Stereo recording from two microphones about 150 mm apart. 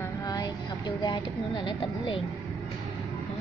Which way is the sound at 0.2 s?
25° left (ahead or behind).